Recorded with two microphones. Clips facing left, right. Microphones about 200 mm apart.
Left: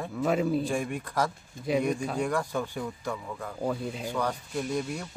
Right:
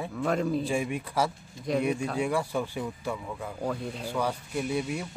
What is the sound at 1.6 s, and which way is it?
Speech, 55° left (ahead or behind).